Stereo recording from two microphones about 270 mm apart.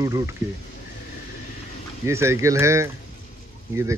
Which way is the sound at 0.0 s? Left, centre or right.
Centre.